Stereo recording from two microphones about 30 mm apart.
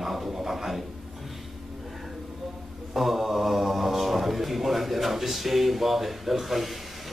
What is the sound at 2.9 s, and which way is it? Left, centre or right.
Speech, centre.